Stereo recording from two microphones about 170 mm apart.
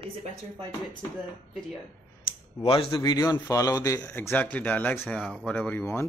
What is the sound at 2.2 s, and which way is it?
A man's voice, 35° left (ahead or behind).